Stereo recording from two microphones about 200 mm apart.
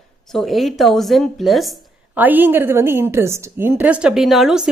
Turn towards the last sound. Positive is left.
turn(degrees=0)  # may be behind; listen again after turning